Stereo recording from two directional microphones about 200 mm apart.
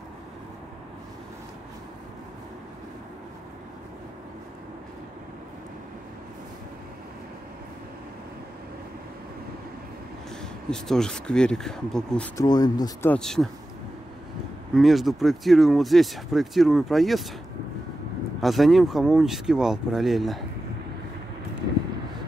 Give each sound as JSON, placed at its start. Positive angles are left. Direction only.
{"t": 10.7, "sound": "speech", "side_deg": 5}
{"t": 12.4, "sound": "speech", "side_deg": 20}
{"t": 13.1, "sound": "speech", "side_deg": 0}
{"t": 14.8, "sound": "speech", "side_deg": 0}
{"t": 18.4, "sound": "speech", "side_deg": 0}